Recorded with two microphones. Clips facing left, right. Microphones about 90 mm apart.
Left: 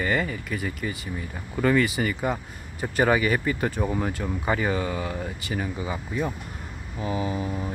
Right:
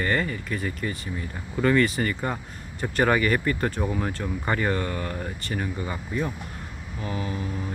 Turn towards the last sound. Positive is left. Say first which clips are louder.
# left 3 dB
turn(degrees=10)  # may be behind; listen again after turning